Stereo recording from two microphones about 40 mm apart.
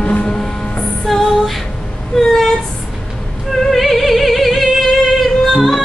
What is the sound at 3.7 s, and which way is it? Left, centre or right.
Music, centre.